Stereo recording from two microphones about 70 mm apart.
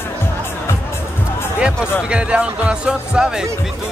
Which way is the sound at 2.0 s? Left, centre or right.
Centre.